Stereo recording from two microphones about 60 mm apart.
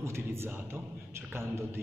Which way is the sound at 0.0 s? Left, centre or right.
Right.